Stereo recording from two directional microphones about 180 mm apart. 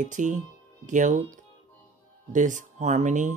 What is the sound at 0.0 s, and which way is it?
Speech, 45° right (ahead or behind).